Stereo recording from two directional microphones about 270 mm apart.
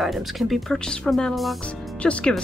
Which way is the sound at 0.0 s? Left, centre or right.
Centre.